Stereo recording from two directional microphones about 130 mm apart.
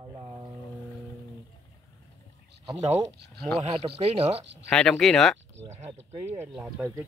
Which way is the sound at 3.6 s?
45° right (ahead or behind).